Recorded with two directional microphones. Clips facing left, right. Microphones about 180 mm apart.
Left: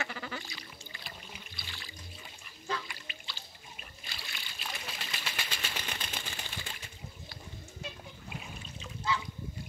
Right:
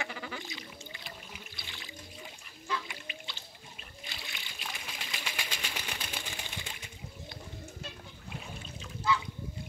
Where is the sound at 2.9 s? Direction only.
20° right (ahead or behind).